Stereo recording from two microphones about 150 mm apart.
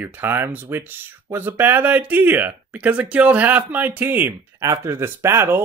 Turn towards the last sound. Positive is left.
turn(degrees=-15)  # may be behind; listen again after turning